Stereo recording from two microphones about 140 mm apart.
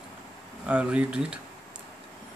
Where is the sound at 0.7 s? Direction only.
10° right (ahead or behind).